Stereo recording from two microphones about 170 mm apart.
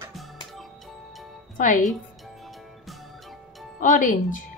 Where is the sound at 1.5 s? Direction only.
50° left (ahead or behind).